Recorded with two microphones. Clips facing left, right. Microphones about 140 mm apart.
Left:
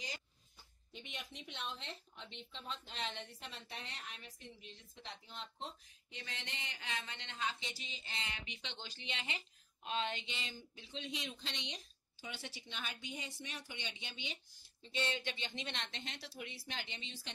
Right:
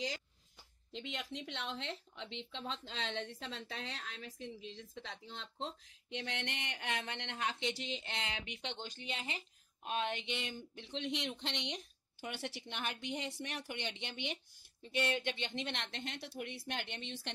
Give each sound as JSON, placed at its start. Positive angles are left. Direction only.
{"t": 0.9, "sound": "speech", "side_deg": -90}
{"t": 9.8, "sound": "speech", "side_deg": -55}